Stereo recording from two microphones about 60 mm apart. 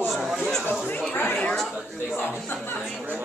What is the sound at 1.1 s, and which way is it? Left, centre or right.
Chatter, left.